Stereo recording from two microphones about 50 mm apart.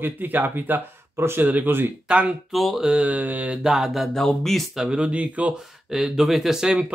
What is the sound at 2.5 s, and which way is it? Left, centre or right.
Mantra, centre.